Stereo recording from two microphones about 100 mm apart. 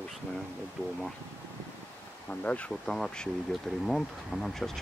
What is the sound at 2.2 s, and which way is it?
Speech, 15° left (ahead or behind).